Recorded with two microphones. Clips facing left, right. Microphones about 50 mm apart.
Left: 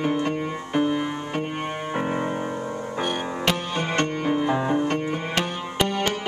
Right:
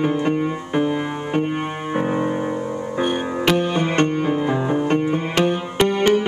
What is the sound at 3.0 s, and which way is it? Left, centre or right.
Music, centre.